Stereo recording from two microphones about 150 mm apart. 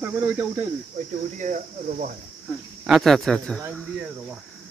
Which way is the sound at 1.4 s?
60° right (ahead or behind).